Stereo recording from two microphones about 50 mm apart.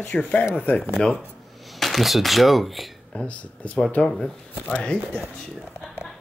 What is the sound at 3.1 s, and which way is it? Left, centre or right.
Speech, left.